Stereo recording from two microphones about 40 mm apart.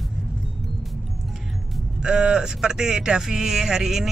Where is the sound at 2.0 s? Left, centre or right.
Centre.